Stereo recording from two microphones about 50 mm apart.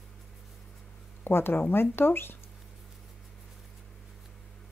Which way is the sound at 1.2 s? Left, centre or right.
Left.